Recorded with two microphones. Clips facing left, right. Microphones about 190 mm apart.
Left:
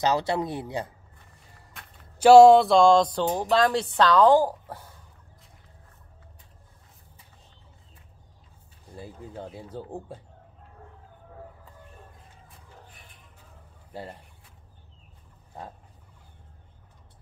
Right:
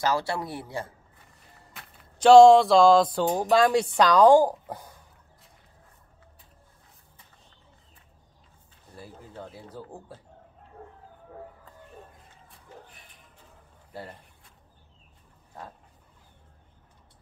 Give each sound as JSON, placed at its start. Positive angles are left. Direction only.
{"t": 0.0, "sound": "speech", "side_deg": 20}
{"t": 2.1, "sound": "speech", "side_deg": 5}
{"t": 8.9, "sound": "speech", "side_deg": 20}